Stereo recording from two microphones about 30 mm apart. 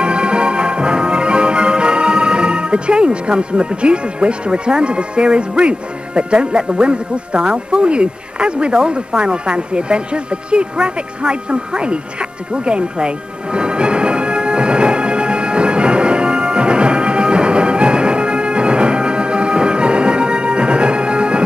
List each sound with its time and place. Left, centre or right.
0.0 s music: right
5.6 s speech: right
7.5 s a sound: right